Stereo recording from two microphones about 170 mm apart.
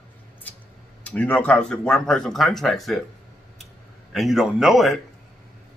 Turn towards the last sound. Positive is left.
turn(degrees=0)  # may be behind; listen again after turning